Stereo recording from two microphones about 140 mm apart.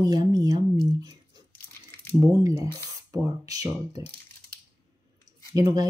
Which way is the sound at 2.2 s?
25° right (ahead or behind).